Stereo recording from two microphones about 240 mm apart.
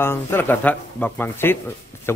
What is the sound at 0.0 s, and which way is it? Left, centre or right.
Speech, centre.